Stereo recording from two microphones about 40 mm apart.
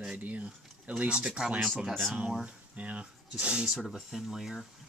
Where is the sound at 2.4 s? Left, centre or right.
Right.